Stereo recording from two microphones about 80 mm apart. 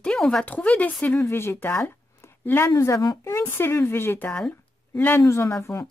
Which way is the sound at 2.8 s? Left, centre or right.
Left.